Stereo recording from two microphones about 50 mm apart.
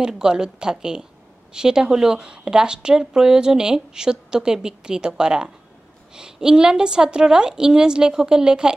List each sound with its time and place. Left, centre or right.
0.0 s speech: centre